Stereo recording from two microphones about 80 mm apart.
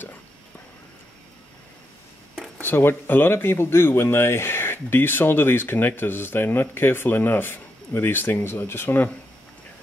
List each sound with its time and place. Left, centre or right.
2.6 s speech: left